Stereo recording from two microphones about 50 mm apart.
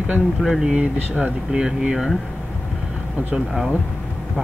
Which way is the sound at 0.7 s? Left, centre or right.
Right.